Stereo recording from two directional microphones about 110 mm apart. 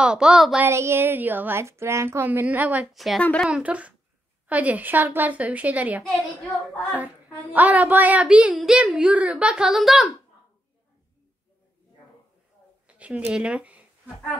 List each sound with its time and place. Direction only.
0.0 s a woman's voice: 10° right (ahead or behind)
0.6 s a woman's voice: 25° right (ahead or behind)
2.9 s a woman's voice: centre (ahead or behind)
3.2 s a woman's voice: 10° left (ahead or behind)
3.4 s a woman's voice: 10° right (ahead or behind)
7.5 s a woman's voice: 15° right (ahead or behind)
12.8 s a sound: 10° right (ahead or behind)